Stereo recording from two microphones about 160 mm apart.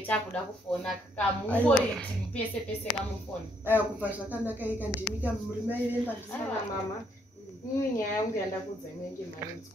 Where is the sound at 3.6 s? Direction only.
10° right (ahead or behind).